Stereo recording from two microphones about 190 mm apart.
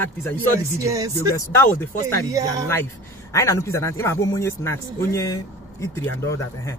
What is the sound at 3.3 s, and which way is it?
A man's voice, 15° left (ahead or behind).